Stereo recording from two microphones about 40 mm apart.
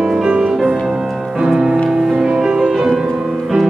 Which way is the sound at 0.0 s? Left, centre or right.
Centre.